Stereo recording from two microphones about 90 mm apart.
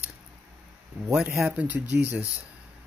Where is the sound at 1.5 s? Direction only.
15° right (ahead or behind).